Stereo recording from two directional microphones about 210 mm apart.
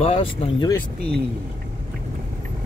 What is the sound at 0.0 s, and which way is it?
Speech, 25° left (ahead or behind).